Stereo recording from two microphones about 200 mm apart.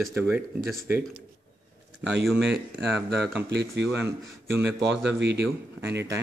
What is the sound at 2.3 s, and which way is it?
Speech, 60° right (ahead or behind).